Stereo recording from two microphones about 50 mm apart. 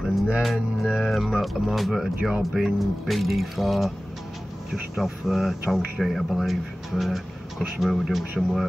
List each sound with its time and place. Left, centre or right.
0.0 s music: centre
0.4 s speech: centre
4.9 s speech: centre